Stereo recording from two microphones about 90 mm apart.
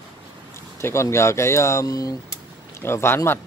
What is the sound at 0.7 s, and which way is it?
Speech, 30° left (ahead or behind).